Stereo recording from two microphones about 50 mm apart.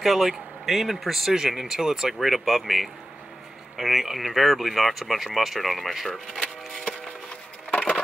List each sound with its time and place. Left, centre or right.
0.0 s speech: centre
7.7 s wood: left